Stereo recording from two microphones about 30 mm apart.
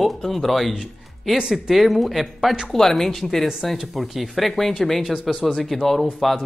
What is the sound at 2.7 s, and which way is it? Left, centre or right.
Speech, centre.